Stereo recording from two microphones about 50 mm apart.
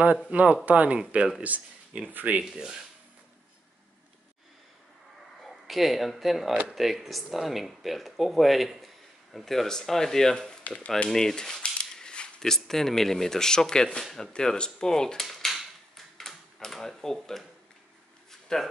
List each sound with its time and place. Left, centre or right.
0.3 s speech: right
2.4 s speech: centre
5.4 s speech: centre
11.1 s cutlery: centre
14.1 s speech: centre
15.2 s a sound: centre
16.2 s tick-tock: centre
18.3 s a sound: centre